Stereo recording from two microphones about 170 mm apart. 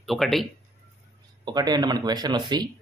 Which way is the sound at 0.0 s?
Centre (ahead or behind).